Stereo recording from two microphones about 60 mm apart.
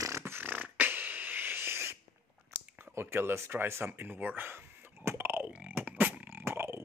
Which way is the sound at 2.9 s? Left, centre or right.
Right.